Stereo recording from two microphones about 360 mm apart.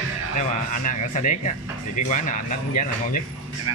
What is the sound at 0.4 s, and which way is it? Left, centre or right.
Speech, left.